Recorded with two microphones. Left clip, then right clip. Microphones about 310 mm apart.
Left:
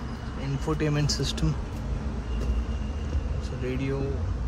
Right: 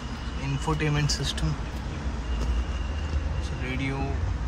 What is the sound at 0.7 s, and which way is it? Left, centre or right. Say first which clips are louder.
Speech: even; centre.